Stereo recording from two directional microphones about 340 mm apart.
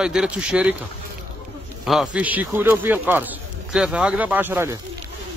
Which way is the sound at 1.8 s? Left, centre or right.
Centre.